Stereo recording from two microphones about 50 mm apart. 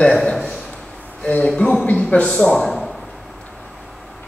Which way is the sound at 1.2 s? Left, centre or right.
Left.